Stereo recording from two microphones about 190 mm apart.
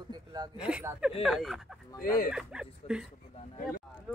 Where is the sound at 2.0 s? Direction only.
50° left (ahead or behind).